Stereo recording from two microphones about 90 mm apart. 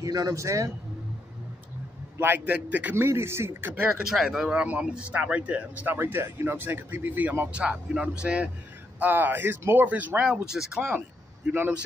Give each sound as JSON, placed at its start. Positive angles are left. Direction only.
{"t": 0.0, "sound": "a man's voice", "side_deg": -40}
{"t": 2.1, "sound": "speech", "side_deg": -20}
{"t": 3.1, "sound": "speech", "side_deg": -30}
{"t": 4.0, "sound": "speech", "side_deg": -5}
{"t": 10.8, "sound": "speech", "side_deg": -20}